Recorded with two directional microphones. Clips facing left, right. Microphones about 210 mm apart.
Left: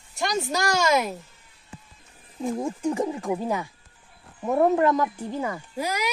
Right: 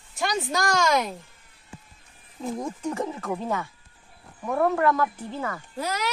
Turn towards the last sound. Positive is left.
turn(degrees=10)  # may be behind; listen again after turning